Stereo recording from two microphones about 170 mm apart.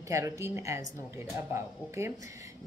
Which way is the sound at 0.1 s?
15° right (ahead or behind).